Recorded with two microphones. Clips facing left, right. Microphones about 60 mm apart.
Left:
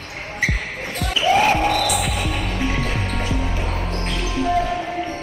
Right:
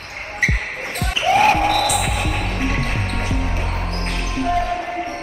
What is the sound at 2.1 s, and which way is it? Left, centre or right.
Music, right.